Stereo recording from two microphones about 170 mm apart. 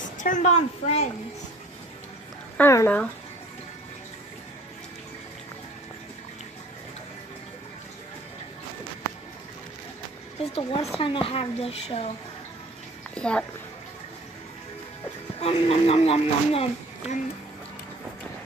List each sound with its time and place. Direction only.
0.0 s a woman's voice: 50° left (ahead or behind)
2.5 s speech: 15° left (ahead or behind)
10.4 s speech: 35° left (ahead or behind)
13.1 s speech: 5° left (ahead or behind)
15.4 s speech: 35° left (ahead or behind)